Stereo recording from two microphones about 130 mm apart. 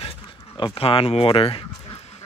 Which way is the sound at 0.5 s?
40° left (ahead or behind).